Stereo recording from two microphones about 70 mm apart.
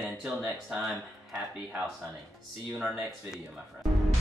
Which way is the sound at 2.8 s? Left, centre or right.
Centre.